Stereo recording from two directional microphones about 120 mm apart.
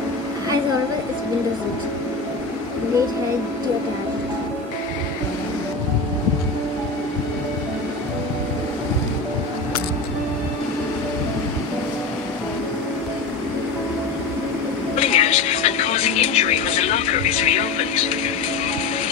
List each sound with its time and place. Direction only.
15.0 s music: 65° left (ahead or behind)